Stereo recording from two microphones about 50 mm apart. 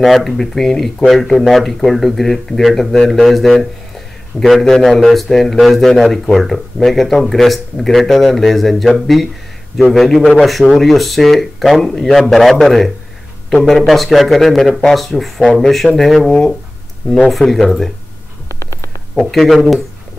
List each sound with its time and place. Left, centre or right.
0.0 s a man's voice: centre
19.1 s a man's voice: centre